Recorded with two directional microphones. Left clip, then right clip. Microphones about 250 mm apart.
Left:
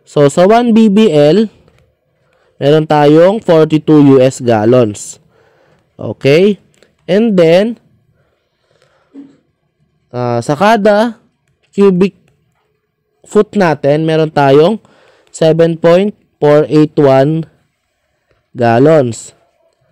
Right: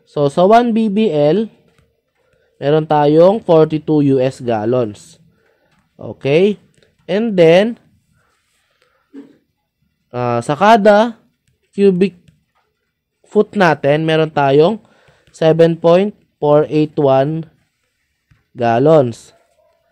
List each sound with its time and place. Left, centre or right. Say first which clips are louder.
0.0 s speech: left 5 dB; left
2.6 s speech: left 5 dB; left
10.1 s speech: left 3 dB; centre
10.6 s speech: even; left
13.3 s speech: left 2 dB; left
18.6 s speech: left 3 dB; left
19.0 s speech: left 4 dB; centre